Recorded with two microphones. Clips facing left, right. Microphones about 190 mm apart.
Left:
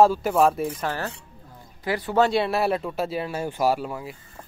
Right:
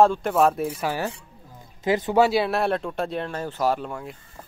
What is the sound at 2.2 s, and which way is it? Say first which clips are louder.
Speech: left 1 dB; centre (ahead or behind).